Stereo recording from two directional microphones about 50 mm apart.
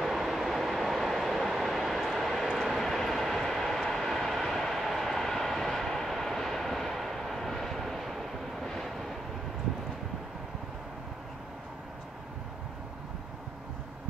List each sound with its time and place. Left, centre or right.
0.0 s vehicle: centre